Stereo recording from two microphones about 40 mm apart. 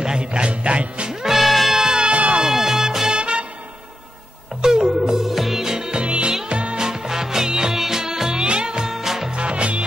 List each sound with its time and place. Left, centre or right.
0.0 s music: right
1.2 s music: centre
1.8 s music: centre
2.4 s music: centre
3.1 s music: right
4.6 s music: centre
6.9 s music: centre
9.3 s music: right